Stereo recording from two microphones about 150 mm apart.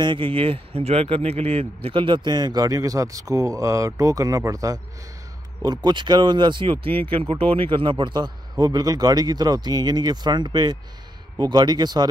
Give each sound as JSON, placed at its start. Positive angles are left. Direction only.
{"t": 0.0, "sound": "a man's voice", "side_deg": -35}